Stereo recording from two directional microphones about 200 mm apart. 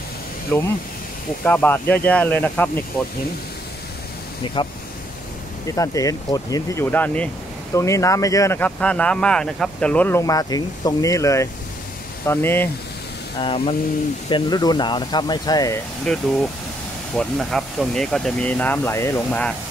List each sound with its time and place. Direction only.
0.5 s speech: 10° left (ahead or behind)
4.6 s speech: 25° left (ahead or behind)
5.8 s speech: 15° left (ahead or behind)
13.4 s speech: 25° left (ahead or behind)
16.1 s speech: 5° left (ahead or behind)